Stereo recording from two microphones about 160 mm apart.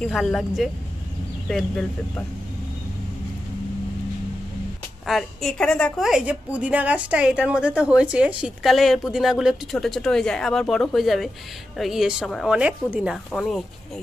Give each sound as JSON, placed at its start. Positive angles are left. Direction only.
{"t": 0.0, "sound": "a woman's voice", "side_deg": 5}
{"t": 5.0, "sound": "a woman's voice", "side_deg": 0}